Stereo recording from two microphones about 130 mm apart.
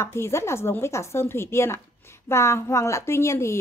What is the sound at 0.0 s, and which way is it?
A woman's voice, 20° left (ahead or behind).